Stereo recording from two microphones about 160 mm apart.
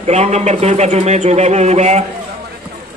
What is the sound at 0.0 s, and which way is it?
Speech, 45° right (ahead or behind).